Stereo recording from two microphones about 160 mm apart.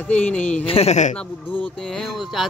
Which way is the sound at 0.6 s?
40° left (ahead or behind).